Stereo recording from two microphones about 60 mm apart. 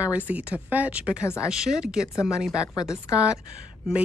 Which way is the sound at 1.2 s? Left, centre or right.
Left.